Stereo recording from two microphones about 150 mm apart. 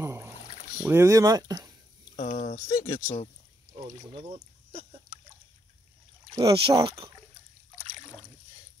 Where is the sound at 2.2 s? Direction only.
55° left (ahead or behind).